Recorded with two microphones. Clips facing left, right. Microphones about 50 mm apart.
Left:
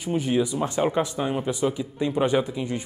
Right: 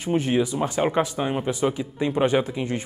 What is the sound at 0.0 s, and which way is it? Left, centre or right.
A man's voice, right.